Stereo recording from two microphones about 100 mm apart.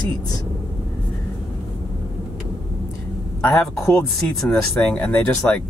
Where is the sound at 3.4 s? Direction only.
10° left (ahead or behind).